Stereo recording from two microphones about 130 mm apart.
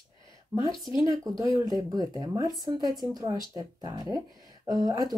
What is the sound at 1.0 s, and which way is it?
Speech, 30° right (ahead or behind).